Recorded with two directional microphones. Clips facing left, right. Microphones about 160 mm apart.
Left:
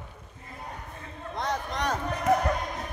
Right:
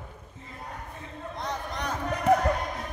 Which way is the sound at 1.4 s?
90° left.